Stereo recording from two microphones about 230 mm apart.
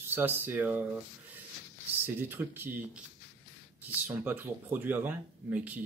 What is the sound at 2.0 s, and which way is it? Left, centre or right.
Speech, centre.